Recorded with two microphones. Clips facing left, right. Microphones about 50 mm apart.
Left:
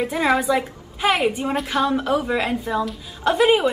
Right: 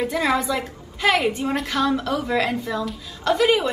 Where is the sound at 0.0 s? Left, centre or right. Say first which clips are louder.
Left 2 dB; centre.